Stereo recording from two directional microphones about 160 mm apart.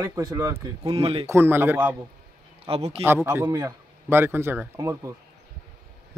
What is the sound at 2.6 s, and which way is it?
Speech, 40° right (ahead or behind).